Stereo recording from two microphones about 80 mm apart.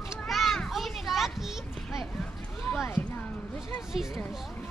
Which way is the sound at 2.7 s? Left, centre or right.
Left.